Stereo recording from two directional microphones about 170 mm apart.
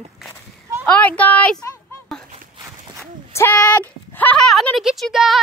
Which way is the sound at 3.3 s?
10° left (ahead or behind).